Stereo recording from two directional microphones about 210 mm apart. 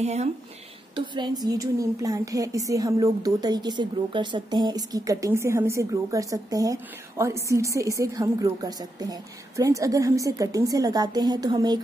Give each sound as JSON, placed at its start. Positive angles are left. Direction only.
{"t": 0.0, "sound": "speech", "side_deg": -30}
{"t": 0.9, "sound": "a woman's voice", "side_deg": -20}